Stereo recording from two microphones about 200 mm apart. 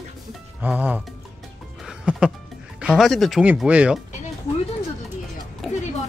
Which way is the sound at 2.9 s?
Centre (ahead or behind).